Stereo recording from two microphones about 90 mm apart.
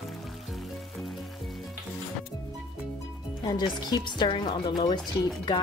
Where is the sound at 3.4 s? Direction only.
55° left (ahead or behind).